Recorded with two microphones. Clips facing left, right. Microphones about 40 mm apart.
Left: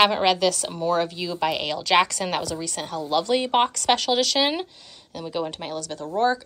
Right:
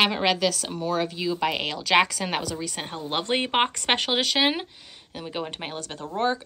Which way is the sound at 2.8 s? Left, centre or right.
Right.